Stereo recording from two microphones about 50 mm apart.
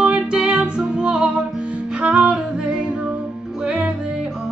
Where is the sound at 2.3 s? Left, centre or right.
Centre.